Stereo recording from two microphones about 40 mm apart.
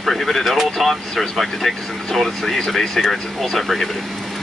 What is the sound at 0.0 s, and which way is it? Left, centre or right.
Speech, centre.